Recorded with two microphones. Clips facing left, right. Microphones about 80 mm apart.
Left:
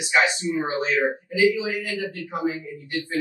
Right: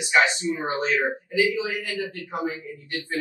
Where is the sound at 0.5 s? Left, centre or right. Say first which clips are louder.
Left 1 dB; left.